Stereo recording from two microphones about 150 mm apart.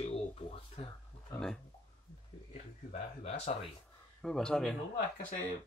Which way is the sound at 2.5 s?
45° left (ahead or behind).